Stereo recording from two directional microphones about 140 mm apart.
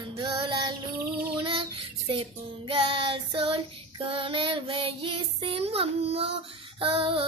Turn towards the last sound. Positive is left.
turn(degrees=-40)  # may be behind; listen again after turning